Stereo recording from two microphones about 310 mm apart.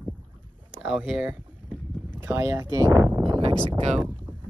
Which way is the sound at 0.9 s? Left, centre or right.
Centre.